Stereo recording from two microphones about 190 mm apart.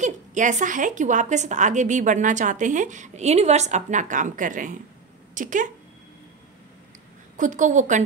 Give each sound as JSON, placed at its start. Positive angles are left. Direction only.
{"t": 0.0, "sound": "a woman's voice", "side_deg": -40}
{"t": 7.3, "sound": "a woman's voice", "side_deg": -40}